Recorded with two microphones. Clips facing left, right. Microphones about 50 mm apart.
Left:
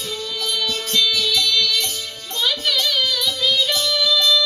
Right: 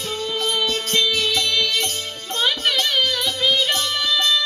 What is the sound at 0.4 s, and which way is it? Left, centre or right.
Music, right.